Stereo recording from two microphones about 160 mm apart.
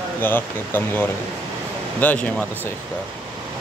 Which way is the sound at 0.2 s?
10° left (ahead or behind).